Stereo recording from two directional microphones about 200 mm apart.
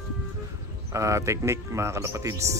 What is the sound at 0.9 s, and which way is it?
Speech, 15° right (ahead or behind).